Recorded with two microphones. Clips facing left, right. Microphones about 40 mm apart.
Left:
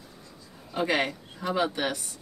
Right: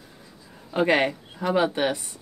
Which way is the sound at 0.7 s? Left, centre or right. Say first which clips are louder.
Right 5 dB; right.